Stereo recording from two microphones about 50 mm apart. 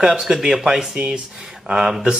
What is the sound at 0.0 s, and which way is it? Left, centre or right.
Speech, centre.